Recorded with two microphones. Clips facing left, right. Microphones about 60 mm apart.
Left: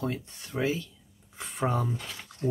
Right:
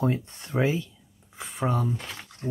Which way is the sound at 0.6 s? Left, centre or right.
Right.